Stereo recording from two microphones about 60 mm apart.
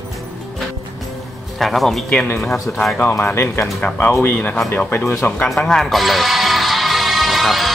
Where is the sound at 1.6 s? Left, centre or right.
Centre.